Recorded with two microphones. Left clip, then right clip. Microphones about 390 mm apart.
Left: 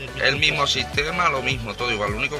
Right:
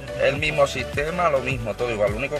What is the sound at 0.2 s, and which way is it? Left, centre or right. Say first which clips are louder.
Speech: even; centre.